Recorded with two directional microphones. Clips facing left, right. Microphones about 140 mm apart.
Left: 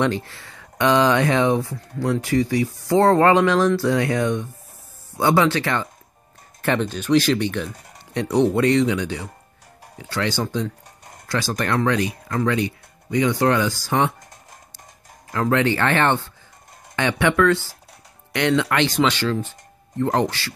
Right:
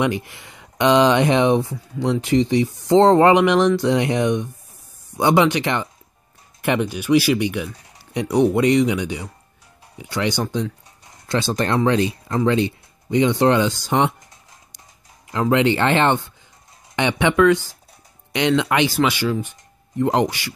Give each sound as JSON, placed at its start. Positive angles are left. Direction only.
{"t": 0.0, "sound": "speech", "side_deg": -15}
{"t": 15.5, "sound": "speech", "side_deg": -20}